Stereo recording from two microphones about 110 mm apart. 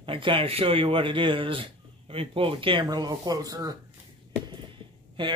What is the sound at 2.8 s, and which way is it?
Speech, 40° right (ahead or behind).